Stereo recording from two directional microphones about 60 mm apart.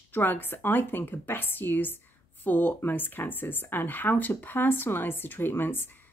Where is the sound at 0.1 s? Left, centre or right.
Left.